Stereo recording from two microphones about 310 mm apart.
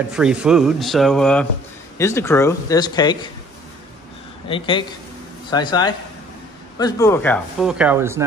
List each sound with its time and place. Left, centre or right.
0.1 s speech: centre
4.5 s speech: centre